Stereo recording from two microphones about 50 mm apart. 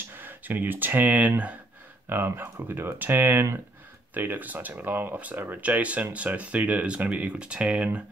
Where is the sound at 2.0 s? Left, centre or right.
Right.